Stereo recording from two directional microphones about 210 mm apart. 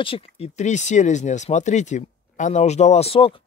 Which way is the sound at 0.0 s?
30° left (ahead or behind).